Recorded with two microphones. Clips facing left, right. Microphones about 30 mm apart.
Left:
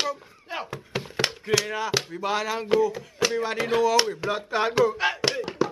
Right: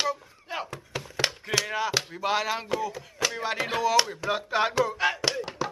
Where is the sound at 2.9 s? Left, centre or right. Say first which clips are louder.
Left 4 dB; centre.